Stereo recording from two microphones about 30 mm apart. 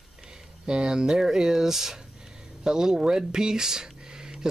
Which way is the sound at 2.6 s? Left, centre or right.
Right.